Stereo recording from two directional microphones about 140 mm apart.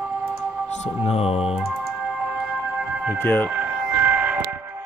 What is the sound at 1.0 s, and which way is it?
Mantra, 45° left (ahead or behind).